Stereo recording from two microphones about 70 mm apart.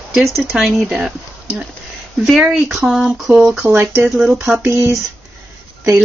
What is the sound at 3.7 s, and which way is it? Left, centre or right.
Speech, right.